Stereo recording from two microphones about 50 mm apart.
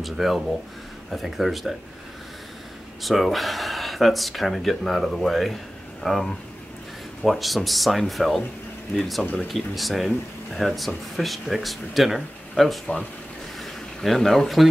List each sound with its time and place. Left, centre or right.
0.0 s speech: centre
3.0 s speech: centre
9.2 s speech: left
9.5 s speech: centre
13.6 s a sound: centre